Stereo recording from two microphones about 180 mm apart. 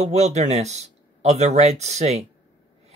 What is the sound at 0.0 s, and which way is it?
Speech, 40° right (ahead or behind).